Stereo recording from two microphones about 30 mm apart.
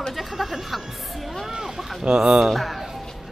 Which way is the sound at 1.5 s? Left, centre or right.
Centre.